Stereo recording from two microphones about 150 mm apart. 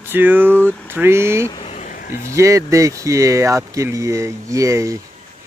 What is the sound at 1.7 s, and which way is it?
Vehicle, 55° left (ahead or behind).